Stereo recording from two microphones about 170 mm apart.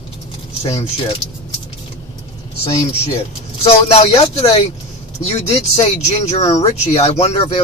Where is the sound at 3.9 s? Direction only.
35° left (ahead or behind).